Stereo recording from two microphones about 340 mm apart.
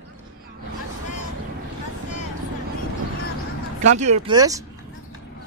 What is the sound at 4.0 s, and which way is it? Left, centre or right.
Speech, centre.